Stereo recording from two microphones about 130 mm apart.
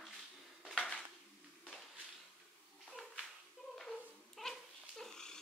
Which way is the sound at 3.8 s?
Centre (ahead or behind).